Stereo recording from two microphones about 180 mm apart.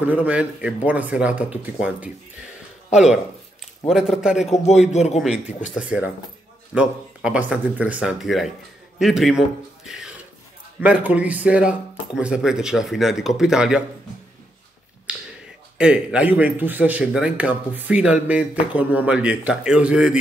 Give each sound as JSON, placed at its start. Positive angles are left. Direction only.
{"t": 0.0, "sound": "speech", "side_deg": -10}
{"t": 4.9, "sound": "a man's voice", "side_deg": 40}
{"t": 5.8, "sound": "speech", "side_deg": -5}
{"t": 9.8, "sound": "a sound", "side_deg": -5}
{"t": 10.8, "sound": "speech", "side_deg": -5}
{"t": 15.1, "sound": "finger snapping", "side_deg": -5}
{"t": 15.8, "sound": "speech", "side_deg": -5}